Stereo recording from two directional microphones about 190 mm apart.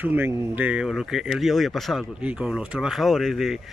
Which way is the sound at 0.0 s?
10° right (ahead or behind).